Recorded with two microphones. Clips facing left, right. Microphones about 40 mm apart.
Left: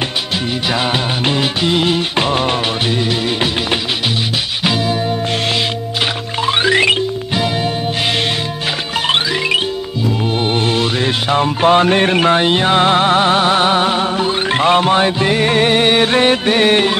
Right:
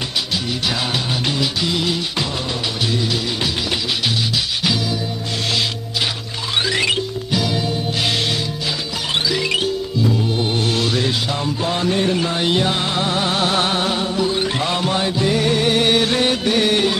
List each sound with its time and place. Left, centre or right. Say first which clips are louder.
1.2 s music: left 5 dB; left
6.4 s music: left 7 dB; left
10.8 s music: left 3 dB; left